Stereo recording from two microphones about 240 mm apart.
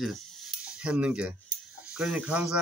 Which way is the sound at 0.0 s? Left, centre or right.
Centre.